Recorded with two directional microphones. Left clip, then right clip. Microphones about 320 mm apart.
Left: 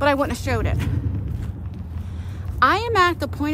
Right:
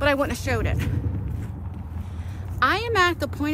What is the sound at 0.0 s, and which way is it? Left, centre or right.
Speech, centre.